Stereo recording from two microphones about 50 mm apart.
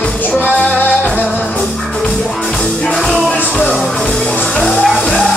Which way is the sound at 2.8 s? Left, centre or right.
Centre.